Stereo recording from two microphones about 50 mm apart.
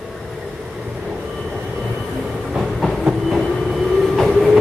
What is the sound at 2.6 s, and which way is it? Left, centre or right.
Train, centre.